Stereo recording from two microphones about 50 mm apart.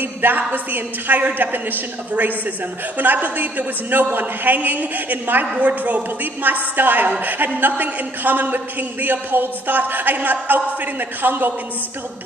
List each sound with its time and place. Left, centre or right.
0.0 s a woman's voice: right